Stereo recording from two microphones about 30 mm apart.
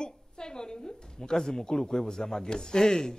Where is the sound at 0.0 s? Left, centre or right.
Left.